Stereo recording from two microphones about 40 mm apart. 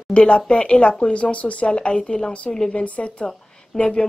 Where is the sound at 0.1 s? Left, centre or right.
Left.